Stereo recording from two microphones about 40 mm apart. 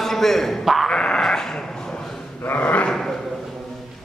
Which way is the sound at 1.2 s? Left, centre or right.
Centre.